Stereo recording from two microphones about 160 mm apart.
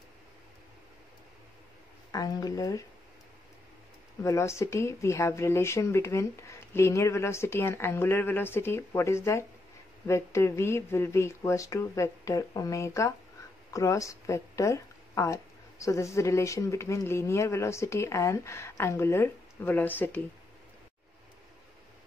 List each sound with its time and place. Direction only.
2.1 s speech: 25° left (ahead or behind)
4.2 s speech: 20° left (ahead or behind)